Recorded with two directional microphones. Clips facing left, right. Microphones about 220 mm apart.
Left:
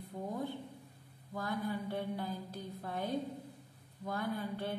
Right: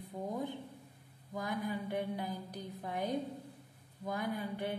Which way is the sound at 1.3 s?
15° right (ahead or behind).